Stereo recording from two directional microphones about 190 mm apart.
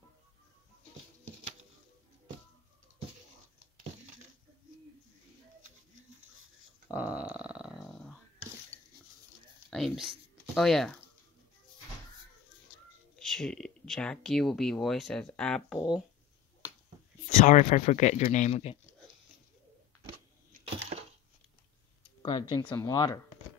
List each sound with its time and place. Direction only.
6.9 s a sound: 10° right (ahead or behind)
9.7 s speech: centre (ahead or behind)
13.1 s speech: centre (ahead or behind)
17.4 s speech: 40° left (ahead or behind)
20.6 s a sound: 35° right (ahead or behind)
22.2 s speech: 20° left (ahead or behind)